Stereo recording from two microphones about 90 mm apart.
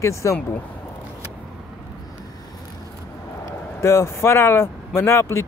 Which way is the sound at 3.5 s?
30° left (ahead or behind).